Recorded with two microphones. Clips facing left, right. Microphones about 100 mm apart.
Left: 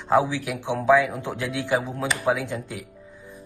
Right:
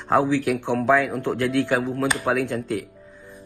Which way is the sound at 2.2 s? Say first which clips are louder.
Right 2 dB; 55° right (ahead or behind).